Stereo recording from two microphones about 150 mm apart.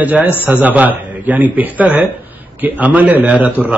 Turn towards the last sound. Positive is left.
turn(degrees=-10)  # may be behind; listen again after turning